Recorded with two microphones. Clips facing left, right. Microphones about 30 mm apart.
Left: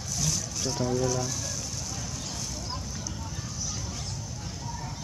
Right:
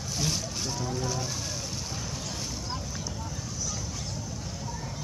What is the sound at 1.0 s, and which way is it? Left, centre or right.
Speech, right.